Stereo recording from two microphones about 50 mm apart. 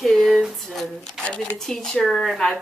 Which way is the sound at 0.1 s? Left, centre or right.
Centre.